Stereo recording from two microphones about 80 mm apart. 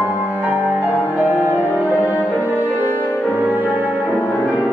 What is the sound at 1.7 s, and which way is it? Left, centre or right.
Music, left.